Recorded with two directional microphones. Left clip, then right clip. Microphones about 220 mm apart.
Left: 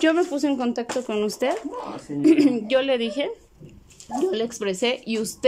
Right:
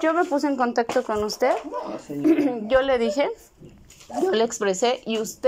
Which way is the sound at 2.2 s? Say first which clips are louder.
Left 3 dB; 25° left (ahead or behind).